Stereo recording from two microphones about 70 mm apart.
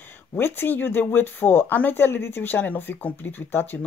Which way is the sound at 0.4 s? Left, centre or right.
Left.